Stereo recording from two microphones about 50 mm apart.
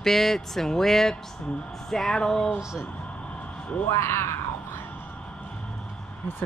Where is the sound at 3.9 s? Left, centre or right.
Left.